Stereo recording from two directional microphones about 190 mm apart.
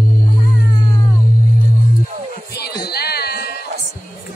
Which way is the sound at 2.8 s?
55° left (ahead or behind).